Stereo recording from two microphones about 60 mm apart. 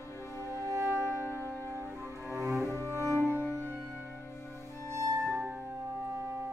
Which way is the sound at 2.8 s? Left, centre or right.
Right.